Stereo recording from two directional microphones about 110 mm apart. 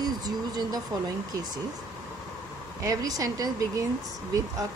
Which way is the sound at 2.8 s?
35° right (ahead or behind).